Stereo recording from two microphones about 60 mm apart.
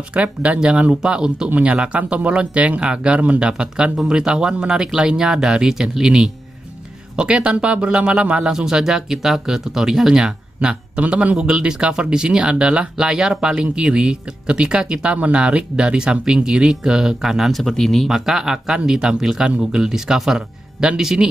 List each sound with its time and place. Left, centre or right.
0.1 s speech: right
11.3 s speech: centre
18.1 s speech: centre